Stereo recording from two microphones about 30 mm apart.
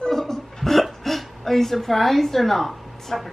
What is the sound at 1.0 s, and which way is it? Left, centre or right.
A woman's voice, centre.